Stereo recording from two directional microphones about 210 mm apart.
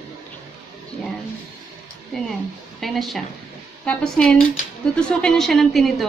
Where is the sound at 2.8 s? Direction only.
Centre (ahead or behind).